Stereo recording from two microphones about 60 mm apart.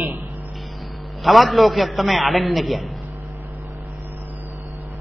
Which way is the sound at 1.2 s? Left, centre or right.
Centre.